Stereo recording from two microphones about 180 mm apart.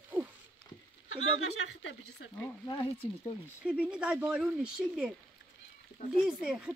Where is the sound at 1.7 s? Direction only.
90° left.